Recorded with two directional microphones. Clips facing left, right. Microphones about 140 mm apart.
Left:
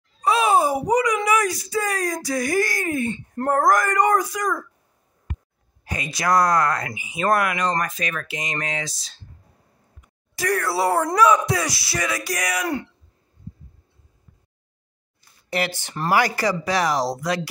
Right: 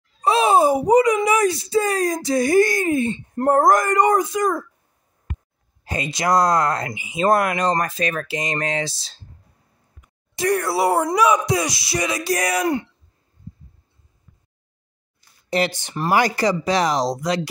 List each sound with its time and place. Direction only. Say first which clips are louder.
0.2 s speech: right 3 dB; 30° right (ahead or behind)
5.9 s speech: right 2 dB; 25° right (ahead or behind)
10.3 s speech: right 3 dB; 20° right (ahead or behind)
15.5 s speech: right 4 dB; 20° right (ahead or behind)